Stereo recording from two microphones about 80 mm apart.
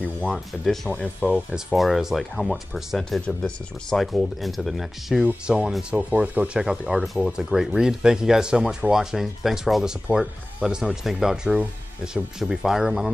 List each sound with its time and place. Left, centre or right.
0.3 s speech: centre
0.8 s speech: centre
1.5 s speech: centre
4.0 s speech: centre
5.2 s speech: centre
5.9 s speech: centre